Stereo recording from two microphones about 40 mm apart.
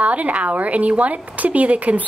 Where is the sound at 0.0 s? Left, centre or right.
Right.